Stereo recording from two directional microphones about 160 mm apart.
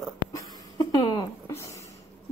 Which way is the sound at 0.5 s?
20° left (ahead or behind).